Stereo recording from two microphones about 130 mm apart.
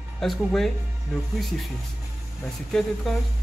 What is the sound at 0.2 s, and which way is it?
Speech, 5° left (ahead or behind).